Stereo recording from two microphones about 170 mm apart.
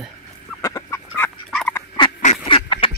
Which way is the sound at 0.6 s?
15° left (ahead or behind).